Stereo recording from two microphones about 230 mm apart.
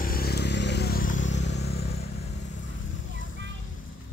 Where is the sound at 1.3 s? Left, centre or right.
Left.